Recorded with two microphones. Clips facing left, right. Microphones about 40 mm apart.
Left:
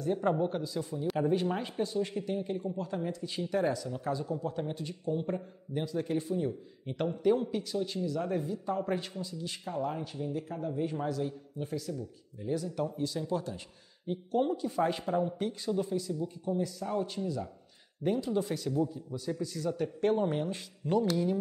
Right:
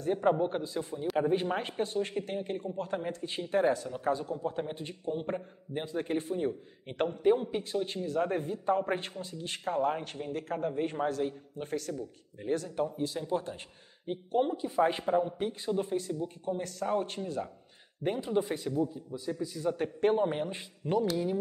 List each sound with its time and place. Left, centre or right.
0.2 s speech: right
1.6 s a man's voice: right
4.4 s a man's voice: right
7.1 s a man's voice: right
12.8 s a man's voice: right
19.1 s a man's voice: centre
19.6 s speech: right